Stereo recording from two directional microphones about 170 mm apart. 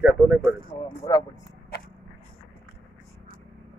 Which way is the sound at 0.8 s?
25° left (ahead or behind).